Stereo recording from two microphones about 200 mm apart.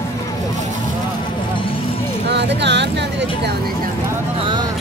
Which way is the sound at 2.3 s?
60° right (ahead or behind).